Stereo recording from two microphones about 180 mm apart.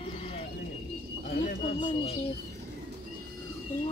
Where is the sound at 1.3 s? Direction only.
45° left (ahead or behind).